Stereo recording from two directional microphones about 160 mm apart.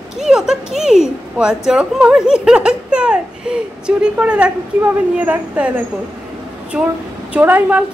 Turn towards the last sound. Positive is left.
turn(degrees=-10)  # may be behind; listen again after turning